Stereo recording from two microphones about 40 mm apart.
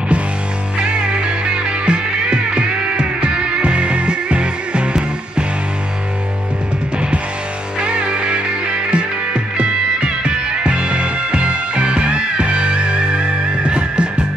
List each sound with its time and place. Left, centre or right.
0.7 s music: right
7.8 s music: right